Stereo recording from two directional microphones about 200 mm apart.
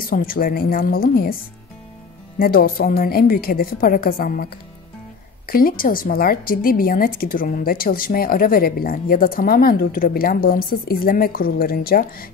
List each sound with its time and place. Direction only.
0.0 s a woman's voice: 45° left (ahead or behind)
2.3 s a woman's voice: 45° left (ahead or behind)
5.5 s a woman's voice: 45° left (ahead or behind)